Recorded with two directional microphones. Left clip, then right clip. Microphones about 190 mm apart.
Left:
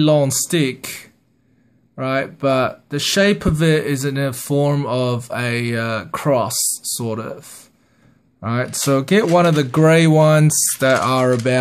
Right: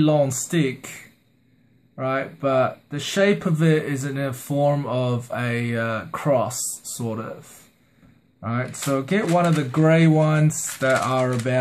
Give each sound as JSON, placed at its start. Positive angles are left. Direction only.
{"t": 0.0, "sound": "speech", "side_deg": 45}
{"t": 8.4, "sound": "speech", "side_deg": 50}